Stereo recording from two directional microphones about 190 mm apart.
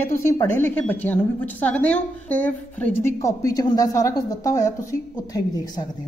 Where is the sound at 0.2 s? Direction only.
15° left (ahead or behind).